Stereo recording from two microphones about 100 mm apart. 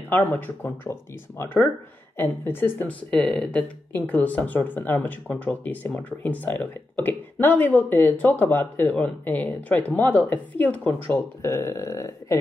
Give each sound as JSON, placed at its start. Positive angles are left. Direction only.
{"t": 0.1, "sound": "speech", "side_deg": 20}
{"t": 3.1, "sound": "speech", "side_deg": 10}